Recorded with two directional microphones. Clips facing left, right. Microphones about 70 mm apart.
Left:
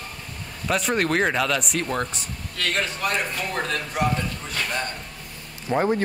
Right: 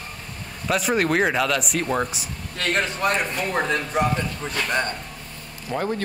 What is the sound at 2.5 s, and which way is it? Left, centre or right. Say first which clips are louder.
A man's voice: right 2 dB; right.